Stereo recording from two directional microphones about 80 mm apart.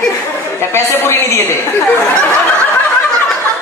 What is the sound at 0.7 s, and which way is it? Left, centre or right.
Speech, left.